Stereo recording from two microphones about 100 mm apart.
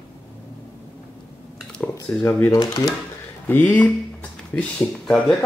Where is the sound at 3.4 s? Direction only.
15° left (ahead or behind).